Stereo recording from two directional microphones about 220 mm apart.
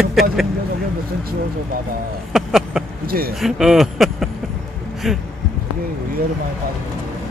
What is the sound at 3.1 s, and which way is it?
Speech, 45° right (ahead or behind).